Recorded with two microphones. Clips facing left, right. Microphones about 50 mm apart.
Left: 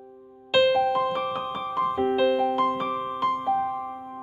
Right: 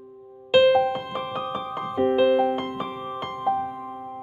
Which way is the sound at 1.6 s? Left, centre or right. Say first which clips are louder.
Even; centre.